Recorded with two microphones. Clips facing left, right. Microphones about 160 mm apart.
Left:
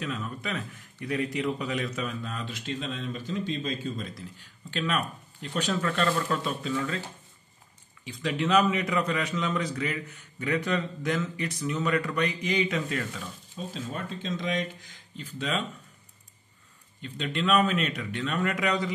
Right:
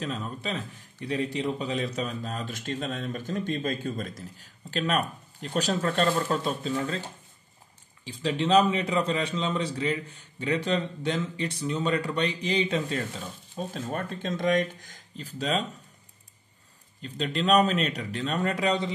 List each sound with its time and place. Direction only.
0.0 s speech: 35° right (ahead or behind)
8.0 s a man's voice: 30° right (ahead or behind)
13.6 s speech: 50° right (ahead or behind)
17.0 s speech: 35° right (ahead or behind)